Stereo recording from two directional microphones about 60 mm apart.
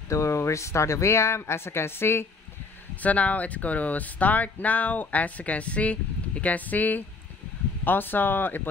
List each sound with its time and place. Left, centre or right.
0.1 s speech: left
3.0 s speech: left